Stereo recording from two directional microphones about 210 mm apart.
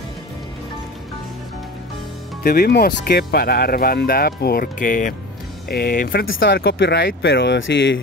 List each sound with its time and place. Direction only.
2.4 s speech: 45° left (ahead or behind)